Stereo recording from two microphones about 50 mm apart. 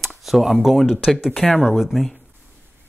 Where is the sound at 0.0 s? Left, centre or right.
Centre.